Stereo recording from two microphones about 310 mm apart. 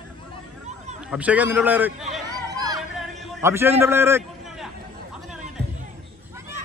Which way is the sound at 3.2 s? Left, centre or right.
Centre.